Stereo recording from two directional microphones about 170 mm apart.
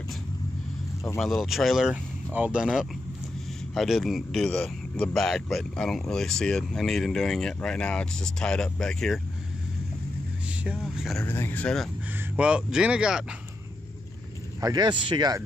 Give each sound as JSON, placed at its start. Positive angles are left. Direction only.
{"t": 1.2, "sound": "speech", "side_deg": 0}
{"t": 10.6, "sound": "speech", "side_deg": -5}
{"t": 11.2, "sound": "speech", "side_deg": 15}
{"t": 12.4, "sound": "speech", "side_deg": -5}
{"t": 14.6, "sound": "speech", "side_deg": -25}